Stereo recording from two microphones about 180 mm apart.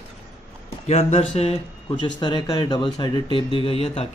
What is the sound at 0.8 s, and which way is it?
Speech, 35° left (ahead or behind).